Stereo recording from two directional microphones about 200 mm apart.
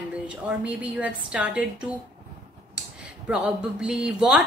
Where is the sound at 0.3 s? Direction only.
5° right (ahead or behind).